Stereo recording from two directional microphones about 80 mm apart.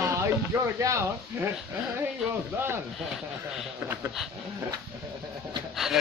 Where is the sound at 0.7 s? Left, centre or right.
Right.